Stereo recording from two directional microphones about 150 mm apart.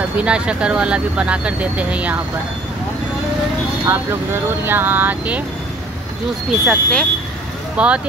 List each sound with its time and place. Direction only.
0.2 s speech: 5° right (ahead or behind)
3.8 s speech: 15° right (ahead or behind)
6.6 s speech: 5° left (ahead or behind)
7.7 s speech: 10° right (ahead or behind)